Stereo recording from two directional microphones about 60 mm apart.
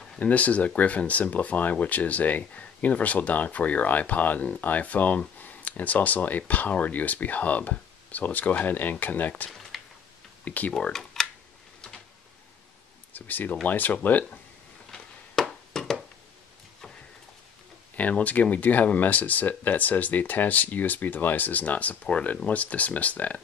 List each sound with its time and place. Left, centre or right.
0.2 s speech: left
9.5 s a sound: centre
10.4 s speech: left
10.8 s speech: centre
13.1 s speech: left
14.9 s a sound: centre
17.9 s speech: left